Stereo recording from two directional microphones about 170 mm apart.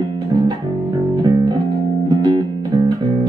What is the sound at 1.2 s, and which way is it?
Music, 25° right (ahead or behind).